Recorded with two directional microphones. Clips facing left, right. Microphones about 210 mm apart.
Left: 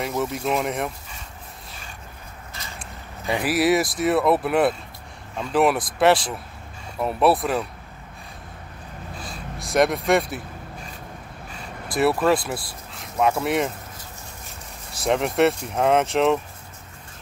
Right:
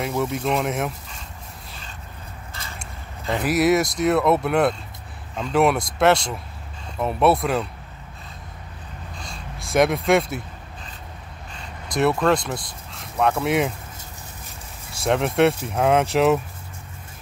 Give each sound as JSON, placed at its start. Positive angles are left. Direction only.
{"t": 0.0, "sound": "speech", "side_deg": 0}
{"t": 3.3, "sound": "speech", "side_deg": 0}
{"t": 9.1, "sound": "a sound", "side_deg": 5}
{"t": 11.5, "sound": "speech", "side_deg": 5}
{"t": 14.9, "sound": "speech", "side_deg": 0}